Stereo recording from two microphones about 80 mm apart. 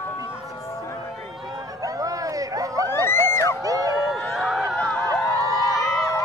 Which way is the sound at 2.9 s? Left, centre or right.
Left.